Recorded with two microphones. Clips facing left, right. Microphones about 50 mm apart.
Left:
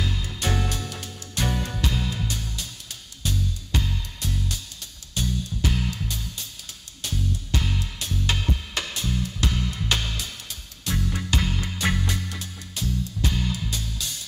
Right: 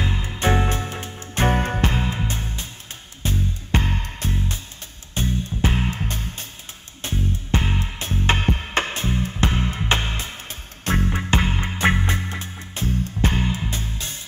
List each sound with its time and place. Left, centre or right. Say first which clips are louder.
0.0 s music: right 6 dB; right